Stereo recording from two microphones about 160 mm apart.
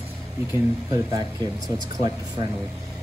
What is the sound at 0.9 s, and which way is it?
Speech, 25° right (ahead or behind).